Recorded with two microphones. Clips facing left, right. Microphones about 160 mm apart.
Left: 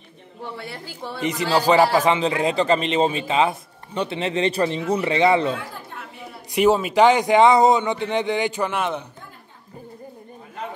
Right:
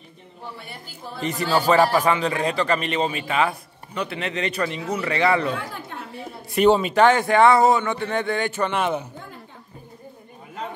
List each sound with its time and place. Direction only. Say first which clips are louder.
0.6 s a woman's voice: left 6 dB; 90° left
1.7 s speech: left 1 dB; 20° left (ahead or behind)
6.5 s speech: even; 5° left (ahead or behind)
8.7 s a man's voice: right 2 dB; centre (ahead or behind)